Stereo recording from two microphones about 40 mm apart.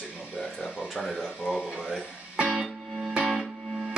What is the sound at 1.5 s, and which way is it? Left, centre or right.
Speech, centre.